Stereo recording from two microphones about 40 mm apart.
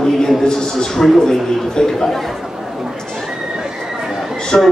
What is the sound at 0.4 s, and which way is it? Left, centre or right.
A man's voice, centre.